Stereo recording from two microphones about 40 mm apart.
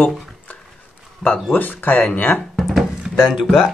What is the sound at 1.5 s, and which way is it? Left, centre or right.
Speech, left.